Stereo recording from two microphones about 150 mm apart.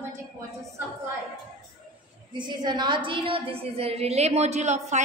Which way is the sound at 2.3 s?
30° right (ahead or behind).